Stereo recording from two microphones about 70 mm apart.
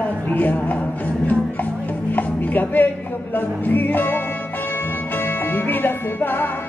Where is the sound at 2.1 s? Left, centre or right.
Left.